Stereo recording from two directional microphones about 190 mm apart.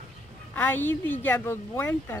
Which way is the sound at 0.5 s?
10° left (ahead or behind).